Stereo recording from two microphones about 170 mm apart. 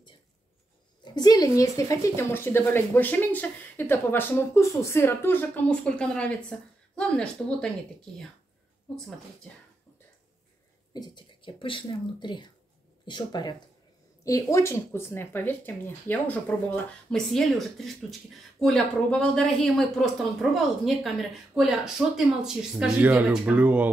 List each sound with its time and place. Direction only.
1.0 s speech: 25° left (ahead or behind); by 9.5 s 5° left (ahead or behind)
10.9 s speech: 25° left (ahead or behind); by 23.9 s 10° right (ahead or behind)